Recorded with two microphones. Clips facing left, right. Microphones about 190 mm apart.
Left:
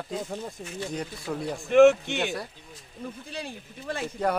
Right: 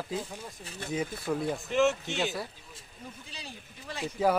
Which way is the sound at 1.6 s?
55° left (ahead or behind).